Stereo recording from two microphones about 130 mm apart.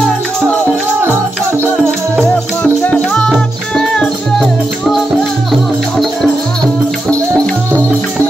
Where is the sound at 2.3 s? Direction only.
10° left (ahead or behind).